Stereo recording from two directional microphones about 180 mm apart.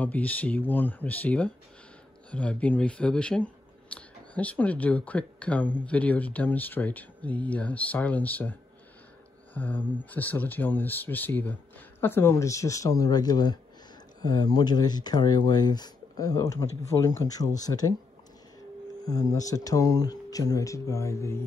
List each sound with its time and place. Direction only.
0.0 s speech: 10° left (ahead or behind)
19.0 s speech: 20° left (ahead or behind)